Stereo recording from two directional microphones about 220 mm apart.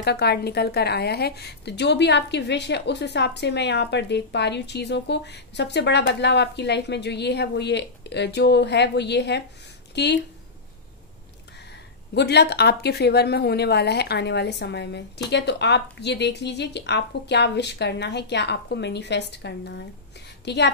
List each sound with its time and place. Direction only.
0.0 s speech: 50° left (ahead or behind)
12.1 s speech: 50° left (ahead or behind)